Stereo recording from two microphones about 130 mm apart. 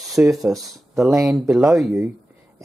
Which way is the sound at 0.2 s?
15° right (ahead or behind).